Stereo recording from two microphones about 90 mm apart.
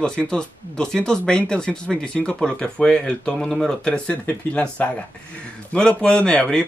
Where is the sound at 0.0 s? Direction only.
10° left (ahead or behind).